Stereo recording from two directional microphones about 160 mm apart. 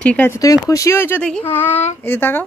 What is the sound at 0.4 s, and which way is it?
Speech, 20° left (ahead or behind).